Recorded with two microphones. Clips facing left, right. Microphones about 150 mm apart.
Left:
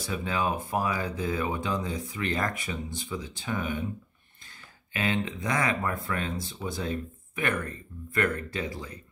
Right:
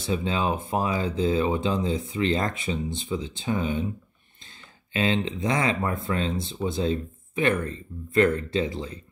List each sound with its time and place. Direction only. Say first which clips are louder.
0.0 s speech: right 4 dB; 25° right (ahead or behind)